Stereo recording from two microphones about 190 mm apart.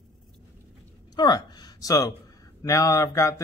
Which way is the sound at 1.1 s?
20° left (ahead or behind).